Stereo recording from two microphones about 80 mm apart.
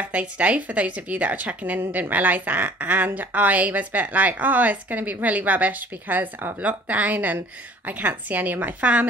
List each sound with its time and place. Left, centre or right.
0.0 s a woman's voice: centre